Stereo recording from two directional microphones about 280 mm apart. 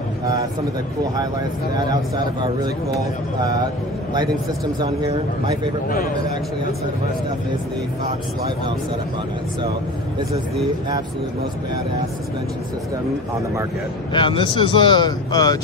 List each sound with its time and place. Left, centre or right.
1.8 s a man's voice: centre
4.7 s a man's voice: centre
14.1 s speech: centre